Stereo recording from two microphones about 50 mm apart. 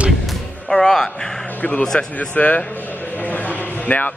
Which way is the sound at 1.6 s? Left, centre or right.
Left.